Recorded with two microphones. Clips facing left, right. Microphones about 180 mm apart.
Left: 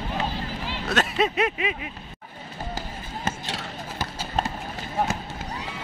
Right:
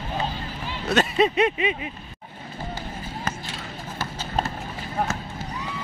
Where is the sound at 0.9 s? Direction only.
Centre (ahead or behind).